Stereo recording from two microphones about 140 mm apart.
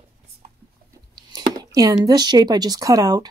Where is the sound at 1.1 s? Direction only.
30° right (ahead or behind).